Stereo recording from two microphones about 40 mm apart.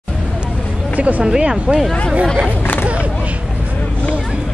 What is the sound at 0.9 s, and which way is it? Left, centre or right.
Speech, right.